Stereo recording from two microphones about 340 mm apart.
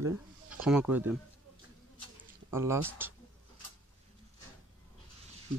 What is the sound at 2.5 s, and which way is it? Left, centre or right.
Speech, centre.